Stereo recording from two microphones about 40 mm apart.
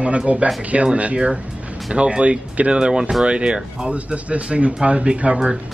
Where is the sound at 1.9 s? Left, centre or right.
Right.